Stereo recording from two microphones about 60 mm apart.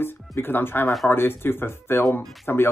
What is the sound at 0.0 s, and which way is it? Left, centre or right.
Speech, left.